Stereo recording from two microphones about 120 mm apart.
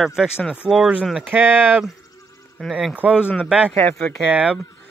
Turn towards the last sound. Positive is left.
turn(degrees=-10)  # may be behind; listen again after turning